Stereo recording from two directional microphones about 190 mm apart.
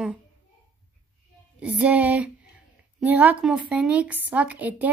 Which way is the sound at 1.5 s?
5° right (ahead or behind).